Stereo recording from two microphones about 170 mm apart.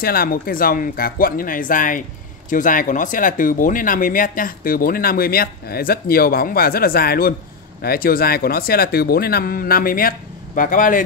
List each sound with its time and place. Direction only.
0.0 s speech: 60° left (ahead or behind)